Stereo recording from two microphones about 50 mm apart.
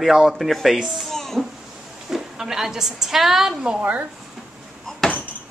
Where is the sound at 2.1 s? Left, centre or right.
Centre.